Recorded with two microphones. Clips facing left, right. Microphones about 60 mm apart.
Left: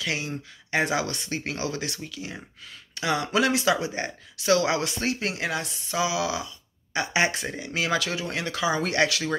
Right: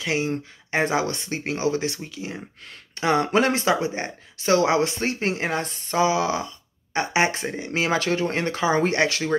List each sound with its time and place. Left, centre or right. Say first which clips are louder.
0.0 s speech: right 5 dB; right